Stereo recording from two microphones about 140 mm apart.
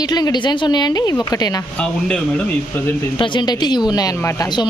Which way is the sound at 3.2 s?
35° left (ahead or behind).